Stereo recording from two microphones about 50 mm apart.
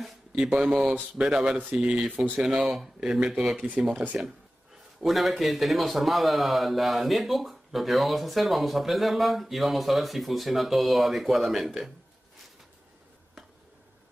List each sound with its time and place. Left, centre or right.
0.6 s speech: centre
2.0 s speech: right
2.4 s speech: centre
3.5 s speech: right
5.0 s speech: centre